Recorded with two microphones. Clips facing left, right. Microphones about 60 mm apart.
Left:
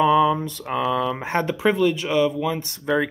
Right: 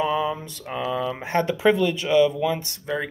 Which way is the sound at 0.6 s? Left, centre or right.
Left.